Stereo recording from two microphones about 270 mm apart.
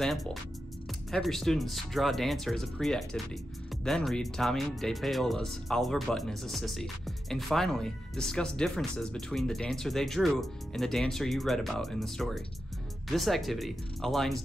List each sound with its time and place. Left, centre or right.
0.0 s speech: centre